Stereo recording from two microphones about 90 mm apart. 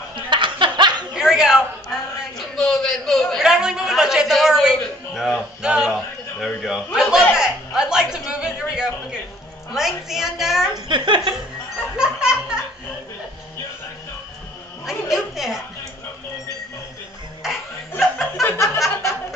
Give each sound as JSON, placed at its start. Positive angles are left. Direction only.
{"t": 0.1, "sound": "snicker", "side_deg": -65}
{"t": 1.1, "sound": "a sound", "side_deg": -5}
{"t": 9.8, "sound": "a woman's voice", "side_deg": -5}
{"t": 10.9, "sound": "speech", "side_deg": -65}
{"t": 12.0, "sound": "music", "side_deg": -10}
{"t": 14.9, "sound": "chatter", "side_deg": -5}
{"t": 17.4, "sound": "music", "side_deg": -5}
{"t": 18.1, "sound": "chuckle", "side_deg": 30}